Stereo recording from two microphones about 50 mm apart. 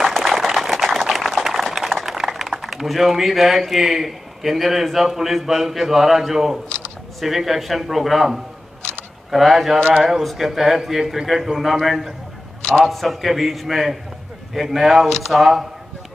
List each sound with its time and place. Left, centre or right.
0.1 s a sound: centre
2.1 s speech: centre
9.8 s speech: centre
10.2 s speech: centre